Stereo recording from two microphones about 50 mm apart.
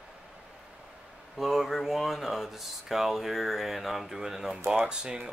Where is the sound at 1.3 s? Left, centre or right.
Centre.